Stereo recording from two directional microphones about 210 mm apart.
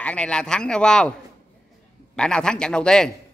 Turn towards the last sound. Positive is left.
turn(degrees=5)  # may be behind; listen again after turning